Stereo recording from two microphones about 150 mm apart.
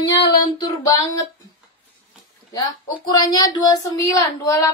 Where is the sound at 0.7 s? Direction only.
25° left (ahead or behind).